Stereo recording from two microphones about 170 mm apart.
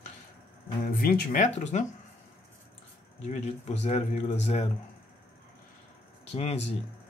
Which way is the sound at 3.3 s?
40° left (ahead or behind).